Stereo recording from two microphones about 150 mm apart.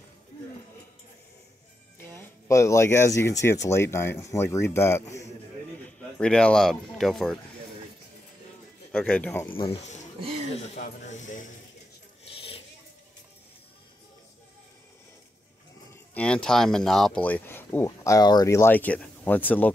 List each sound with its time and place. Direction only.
2.1 s speech: 20° left (ahead or behind)
5.8 s speech: 5° left (ahead or behind)
8.9 s speech: 10° left (ahead or behind)
10.5 s speech: 45° left (ahead or behind)
12.3 s a sound: 40° left (ahead or behind)
15.9 s speech: 10° left (ahead or behind)